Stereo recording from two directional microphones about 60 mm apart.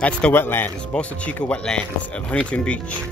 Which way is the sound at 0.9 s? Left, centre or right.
Centre.